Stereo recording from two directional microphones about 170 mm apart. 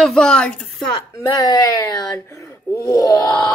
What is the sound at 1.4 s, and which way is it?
Speech, 20° left (ahead or behind).